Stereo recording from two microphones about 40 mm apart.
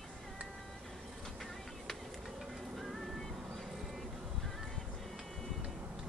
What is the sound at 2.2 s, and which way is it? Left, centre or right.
Music, centre.